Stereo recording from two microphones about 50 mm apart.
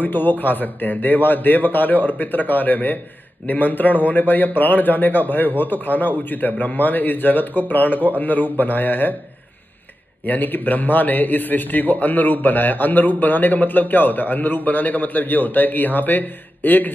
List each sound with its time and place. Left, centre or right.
0.0 s a man's voice: left
10.2 s a man's voice: left